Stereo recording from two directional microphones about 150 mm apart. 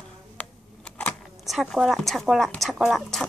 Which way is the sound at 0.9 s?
5° left (ahead or behind).